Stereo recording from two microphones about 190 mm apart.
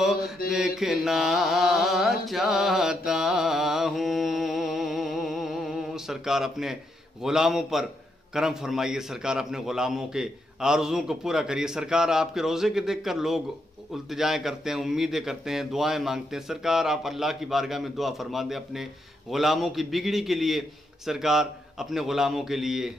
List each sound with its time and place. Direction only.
0.5 s mantra: centre (ahead or behind)
7.2 s a man's voice: centre (ahead or behind)